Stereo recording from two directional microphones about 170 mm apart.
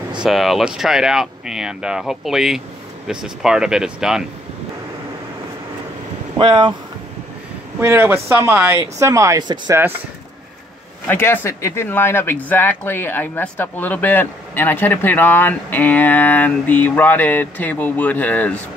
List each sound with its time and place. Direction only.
0.2 s speech: centre (ahead or behind)
6.3 s speech: 30° right (ahead or behind)
7.8 s speech: 15° right (ahead or behind)
11.1 s speech: 15° left (ahead or behind)